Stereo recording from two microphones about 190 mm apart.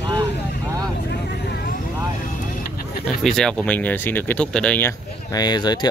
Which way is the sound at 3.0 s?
Centre (ahead or behind).